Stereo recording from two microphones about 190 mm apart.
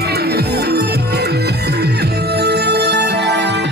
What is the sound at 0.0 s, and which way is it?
Music, 55° right (ahead or behind).